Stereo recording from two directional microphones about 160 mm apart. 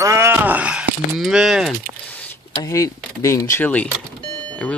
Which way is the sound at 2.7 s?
20° left (ahead or behind).